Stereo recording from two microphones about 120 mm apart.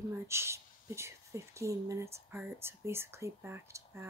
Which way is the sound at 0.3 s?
20° right (ahead or behind).